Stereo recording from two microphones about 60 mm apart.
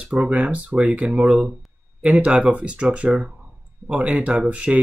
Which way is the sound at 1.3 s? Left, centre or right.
Centre.